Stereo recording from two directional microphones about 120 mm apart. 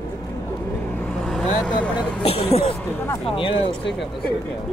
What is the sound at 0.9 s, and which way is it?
Vehicle, 5° left (ahead or behind).